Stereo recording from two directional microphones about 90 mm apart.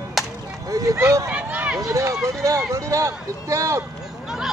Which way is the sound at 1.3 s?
15° right (ahead or behind).